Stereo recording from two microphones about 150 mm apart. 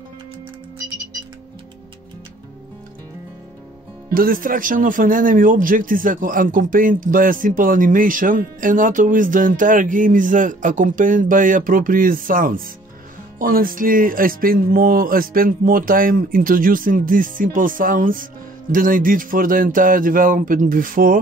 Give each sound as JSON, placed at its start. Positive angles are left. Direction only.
{"t": 4.1, "sound": "speech", "side_deg": -70}